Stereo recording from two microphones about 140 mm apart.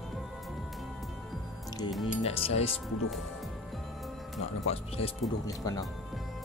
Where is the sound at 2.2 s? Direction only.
45° left (ahead or behind).